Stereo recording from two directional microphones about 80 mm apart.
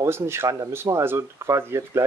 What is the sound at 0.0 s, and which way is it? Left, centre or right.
Speech, right.